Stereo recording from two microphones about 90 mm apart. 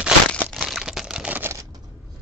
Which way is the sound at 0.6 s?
5° right (ahead or behind).